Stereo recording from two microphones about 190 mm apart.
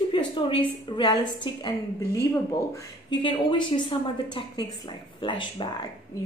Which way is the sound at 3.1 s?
25° left (ahead or behind).